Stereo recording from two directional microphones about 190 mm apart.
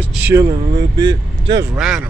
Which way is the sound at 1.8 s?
5° right (ahead or behind).